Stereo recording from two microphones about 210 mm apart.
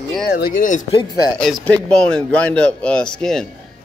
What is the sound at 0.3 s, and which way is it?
Speech, 45° left (ahead or behind).